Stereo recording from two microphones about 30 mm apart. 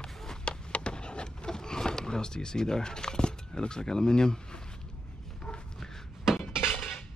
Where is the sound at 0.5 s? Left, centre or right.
Left.